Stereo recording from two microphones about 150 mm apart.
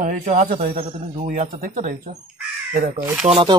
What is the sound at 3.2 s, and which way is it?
Speech, 40° right (ahead or behind).